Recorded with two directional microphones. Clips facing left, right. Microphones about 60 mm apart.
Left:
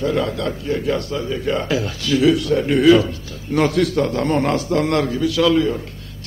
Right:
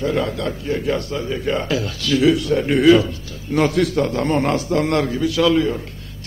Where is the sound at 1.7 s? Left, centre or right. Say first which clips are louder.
Left 1 dB; centre.